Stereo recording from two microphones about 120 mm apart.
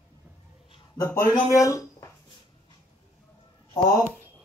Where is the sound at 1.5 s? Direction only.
25° left (ahead or behind).